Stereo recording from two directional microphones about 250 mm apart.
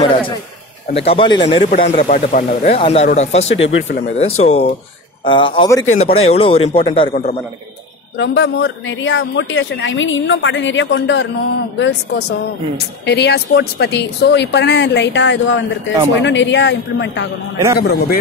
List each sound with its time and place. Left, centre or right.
0.9 s speech: left
5.9 s speech: left
7.1 s a man's voice: left